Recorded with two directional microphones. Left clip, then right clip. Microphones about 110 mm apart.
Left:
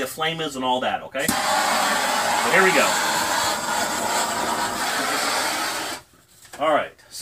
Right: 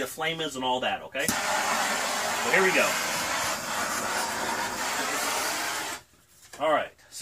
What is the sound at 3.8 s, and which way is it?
Vehicle, 15° right (ahead or behind).